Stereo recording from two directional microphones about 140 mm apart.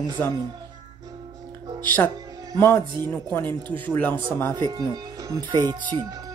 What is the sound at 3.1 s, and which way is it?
Speech, 15° left (ahead or behind).